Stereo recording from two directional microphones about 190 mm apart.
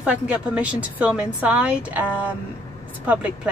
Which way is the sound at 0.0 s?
5° right (ahead or behind).